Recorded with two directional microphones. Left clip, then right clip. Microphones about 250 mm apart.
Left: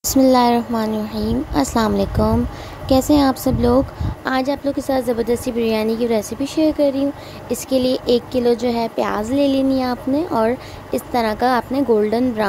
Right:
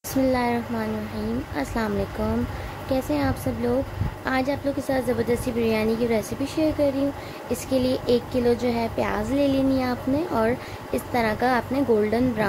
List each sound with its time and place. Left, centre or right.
0.1 s a woman's voice: left